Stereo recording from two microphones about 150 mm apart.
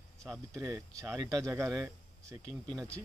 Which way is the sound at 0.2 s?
5° right (ahead or behind).